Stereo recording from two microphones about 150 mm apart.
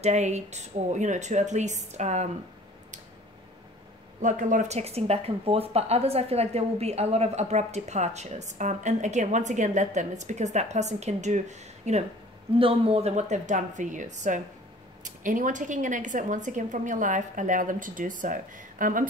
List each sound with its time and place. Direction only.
0.0 s speech: 50° right (ahead or behind)
4.2 s speech: 55° right (ahead or behind)
12.5 s a woman's voice: 40° right (ahead or behind); by 19.0 s 65° right (ahead or behind)